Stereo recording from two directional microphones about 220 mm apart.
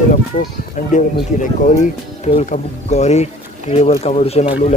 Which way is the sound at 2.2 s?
30° left (ahead or behind).